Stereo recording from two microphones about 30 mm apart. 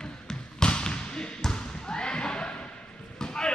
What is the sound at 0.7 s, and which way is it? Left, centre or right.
Basketball bounce, left.